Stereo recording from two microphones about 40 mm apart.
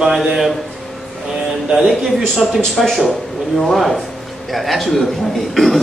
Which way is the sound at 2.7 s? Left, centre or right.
Centre.